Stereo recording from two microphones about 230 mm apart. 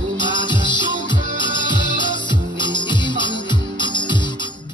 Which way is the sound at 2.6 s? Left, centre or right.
Centre.